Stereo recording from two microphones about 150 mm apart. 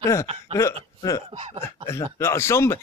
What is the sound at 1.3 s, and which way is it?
Speech, 35° right (ahead or behind).